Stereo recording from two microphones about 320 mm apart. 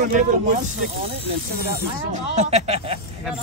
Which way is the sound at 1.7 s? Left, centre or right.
Right.